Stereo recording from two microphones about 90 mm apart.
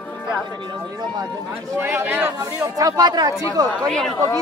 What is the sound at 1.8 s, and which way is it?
Speech, 20° right (ahead or behind).